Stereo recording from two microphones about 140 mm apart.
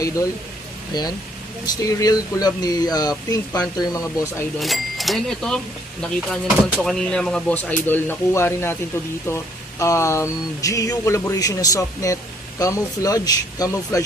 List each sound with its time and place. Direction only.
0.9 s speech: 30° left (ahead or behind)
4.6 s speech: centre (ahead or behind); by 14.0 s 25° left (ahead or behind)